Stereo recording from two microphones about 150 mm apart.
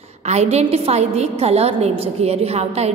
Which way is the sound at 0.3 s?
45° right (ahead or behind).